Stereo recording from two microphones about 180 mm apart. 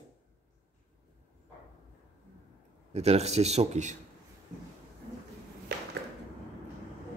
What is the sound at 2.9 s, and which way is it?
Speech, 35° right (ahead or behind).